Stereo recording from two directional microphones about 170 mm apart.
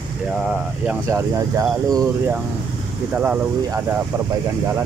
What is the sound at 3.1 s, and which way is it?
Speech, 10° right (ahead or behind).